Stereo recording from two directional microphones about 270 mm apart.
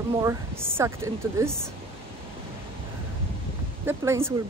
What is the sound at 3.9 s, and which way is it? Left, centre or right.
Speech, centre.